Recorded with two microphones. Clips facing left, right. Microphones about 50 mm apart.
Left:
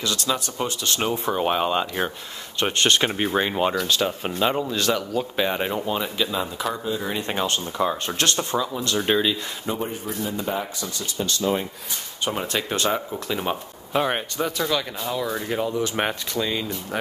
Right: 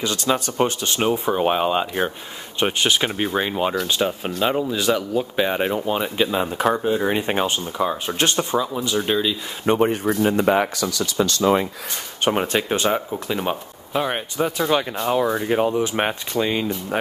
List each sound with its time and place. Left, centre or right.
0.3 s speech: right
0.8 s speech: centre
3.8 s speech: centre
4.4 s speech: centre
6.3 s speech: right; by 8.2 s centre
8.2 s speech: centre
9.0 s speech: centre
9.7 s speech: right
12.3 s speech: right; by 13.6 s centre
13.9 s speech: centre
15.0 s speech: right
15.3 s speech: centre